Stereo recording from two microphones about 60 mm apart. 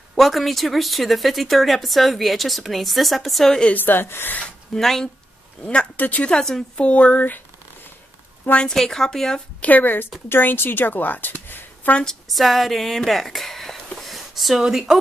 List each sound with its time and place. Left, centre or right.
0.1 s speech: centre
3.7 s speech: left
4.7 s a woman's voice: centre
5.6 s a woman's voice: centre
8.6 s a woman's voice: centre
9.6 s a woman's voice: left
11.4 s a sound: left
12.0 s speech: centre
13.9 s a sound: centre